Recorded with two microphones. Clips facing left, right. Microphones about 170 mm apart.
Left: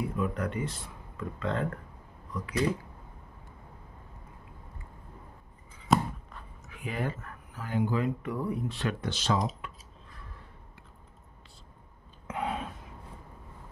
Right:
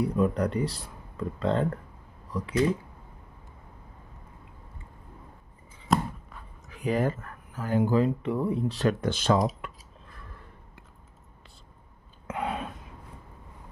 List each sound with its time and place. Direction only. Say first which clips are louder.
0.0 s speech: right 6 dB; 35° right (ahead or behind)
5.9 s a sound: even; centre (ahead or behind)
6.7 s speech: right 8 dB; 40° right (ahead or behind)
8.2 s speech: right 5 dB; 25° right (ahead or behind)
8.6 s speech: right 7 dB; 40° right (ahead or behind)
12.4 s a sound: right 1 dB; 60° right (ahead or behind)